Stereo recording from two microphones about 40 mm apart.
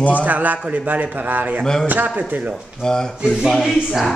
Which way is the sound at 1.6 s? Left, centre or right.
Centre.